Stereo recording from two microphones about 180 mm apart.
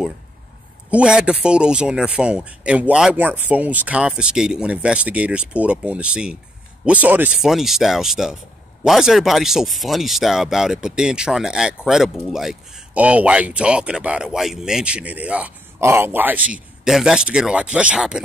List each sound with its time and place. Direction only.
0.8 s speech: 5° right (ahead or behind)